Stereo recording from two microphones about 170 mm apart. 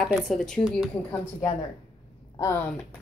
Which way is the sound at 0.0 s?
Centre (ahead or behind).